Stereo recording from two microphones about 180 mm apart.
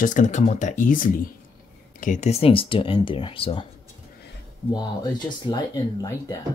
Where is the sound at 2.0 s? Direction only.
40° left (ahead or behind).